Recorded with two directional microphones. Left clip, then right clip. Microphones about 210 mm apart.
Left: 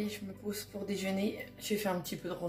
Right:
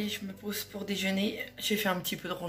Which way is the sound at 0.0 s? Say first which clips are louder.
Right 3 dB; 5° left (ahead or behind).